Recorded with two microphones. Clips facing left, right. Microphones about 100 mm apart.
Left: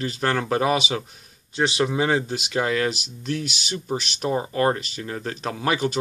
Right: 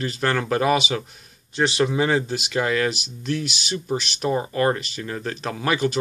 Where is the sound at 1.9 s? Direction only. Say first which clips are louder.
Right 1 dB; 35° left (ahead or behind).